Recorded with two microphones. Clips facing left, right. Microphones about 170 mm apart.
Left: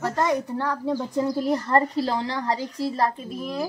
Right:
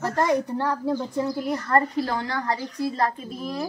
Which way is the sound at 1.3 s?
30° left (ahead or behind).